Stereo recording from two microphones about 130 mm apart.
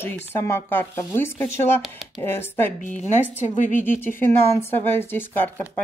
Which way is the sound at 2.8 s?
75° left (ahead or behind).